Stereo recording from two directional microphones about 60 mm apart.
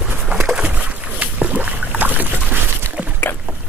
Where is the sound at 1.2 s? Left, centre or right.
Right.